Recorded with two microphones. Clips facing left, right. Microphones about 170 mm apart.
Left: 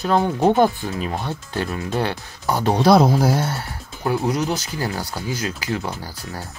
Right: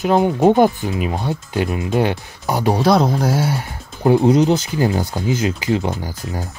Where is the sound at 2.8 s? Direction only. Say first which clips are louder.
Left 3 dB; centre (ahead or behind).